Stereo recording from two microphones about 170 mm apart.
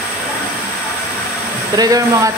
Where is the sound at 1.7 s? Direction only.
20° right (ahead or behind).